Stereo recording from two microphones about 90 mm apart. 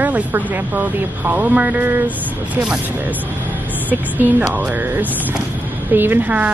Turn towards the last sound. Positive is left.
turn(degrees=-20)  # may be behind; listen again after turning